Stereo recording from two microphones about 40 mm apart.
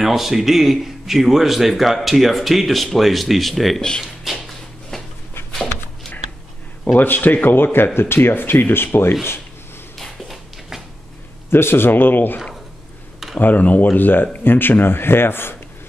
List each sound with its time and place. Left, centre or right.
0.0 s speech: centre
4.0 s a sound: centre
5.5 s a sound: centre
7.0 s speech: left
7.4 s speech: left
10.2 s a sound: centre
11.5 s speech: left
13.4 s speech: left
13.9 s speech: left
14.4 s speech: left